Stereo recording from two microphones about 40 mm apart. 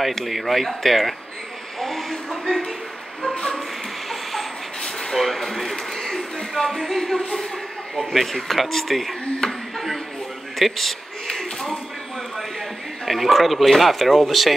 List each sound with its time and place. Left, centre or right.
0.0 s speech: centre
4.1 s vehicle: centre
5.1 s speech: centre
10.6 s a sound: centre
12.4 s speech: centre